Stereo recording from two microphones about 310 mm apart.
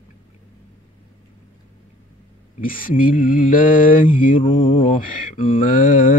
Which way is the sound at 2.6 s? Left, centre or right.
Left.